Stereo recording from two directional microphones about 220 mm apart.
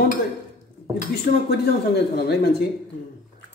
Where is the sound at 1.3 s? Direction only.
45° left (ahead or behind).